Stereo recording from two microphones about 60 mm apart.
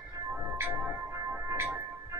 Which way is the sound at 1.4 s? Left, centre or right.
Right.